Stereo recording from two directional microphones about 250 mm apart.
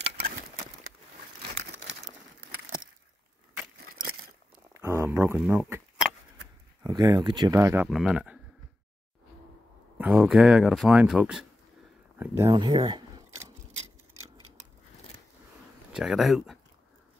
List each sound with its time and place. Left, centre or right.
2.0 s a sound: right
4.7 s a sound: centre
6.8 s speech: centre
9.9 s speech: centre
12.2 s camera: centre
15.9 s speech: centre